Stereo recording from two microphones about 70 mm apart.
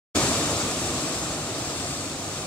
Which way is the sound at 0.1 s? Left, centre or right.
Left.